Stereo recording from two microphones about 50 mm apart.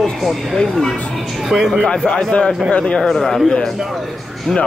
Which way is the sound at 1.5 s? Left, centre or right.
Centre.